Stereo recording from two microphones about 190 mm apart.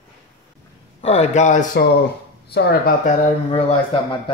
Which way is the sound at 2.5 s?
60° left (ahead or behind).